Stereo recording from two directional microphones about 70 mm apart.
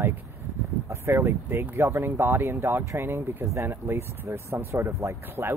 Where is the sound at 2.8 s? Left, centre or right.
Right.